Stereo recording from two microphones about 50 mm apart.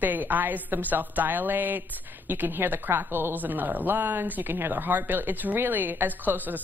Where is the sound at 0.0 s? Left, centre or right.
Right.